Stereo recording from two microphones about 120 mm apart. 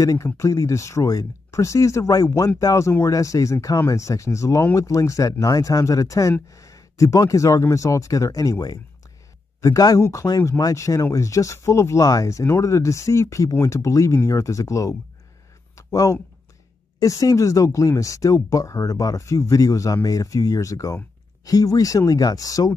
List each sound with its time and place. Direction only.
0.0 s speech: 25° left (ahead or behind)